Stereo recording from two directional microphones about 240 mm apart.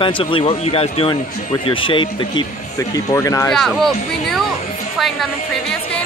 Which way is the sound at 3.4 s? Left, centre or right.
Centre.